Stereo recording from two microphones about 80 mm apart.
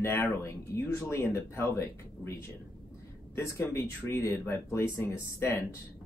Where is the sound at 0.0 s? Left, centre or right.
Left.